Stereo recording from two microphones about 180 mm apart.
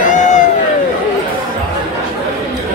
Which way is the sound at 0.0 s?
45° left (ahead or behind).